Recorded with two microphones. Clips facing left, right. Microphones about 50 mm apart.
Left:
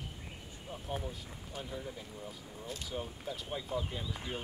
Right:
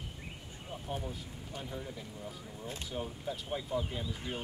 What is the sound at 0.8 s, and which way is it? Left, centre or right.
Speech, centre.